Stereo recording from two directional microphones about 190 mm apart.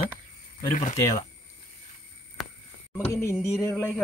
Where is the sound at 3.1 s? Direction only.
15° left (ahead or behind).